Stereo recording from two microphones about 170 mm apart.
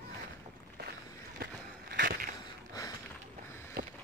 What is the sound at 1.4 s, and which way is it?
Walk, 70° right (ahead or behind).